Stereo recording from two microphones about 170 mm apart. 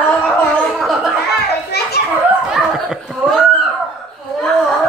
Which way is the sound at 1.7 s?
70° left (ahead or behind).